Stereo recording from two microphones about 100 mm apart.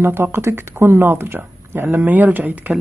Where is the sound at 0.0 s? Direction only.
25° right (ahead or behind).